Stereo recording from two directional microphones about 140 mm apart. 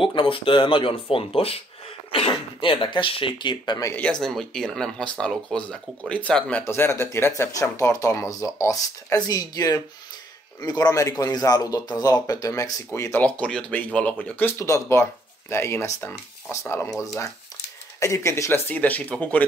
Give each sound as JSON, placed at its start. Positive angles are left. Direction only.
{"t": 0.0, "sound": "speech", "side_deg": 40}
{"t": 3.9, "sound": "speech", "side_deg": 5}